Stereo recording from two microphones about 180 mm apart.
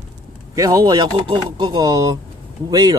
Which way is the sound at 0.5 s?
20° right (ahead or behind).